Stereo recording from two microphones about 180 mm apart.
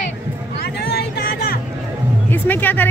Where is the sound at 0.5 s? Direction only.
65° left (ahead or behind).